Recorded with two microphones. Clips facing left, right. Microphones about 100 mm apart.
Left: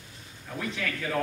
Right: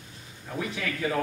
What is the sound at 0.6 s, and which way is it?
Speech, 10° right (ahead or behind).